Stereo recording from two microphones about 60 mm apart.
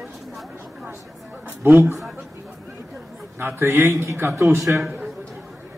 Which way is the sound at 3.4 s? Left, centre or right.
Right.